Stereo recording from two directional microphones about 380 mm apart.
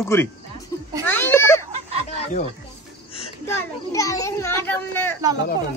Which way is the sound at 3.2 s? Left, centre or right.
Centre.